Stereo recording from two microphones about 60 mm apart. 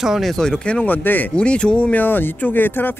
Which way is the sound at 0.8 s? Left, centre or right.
Left.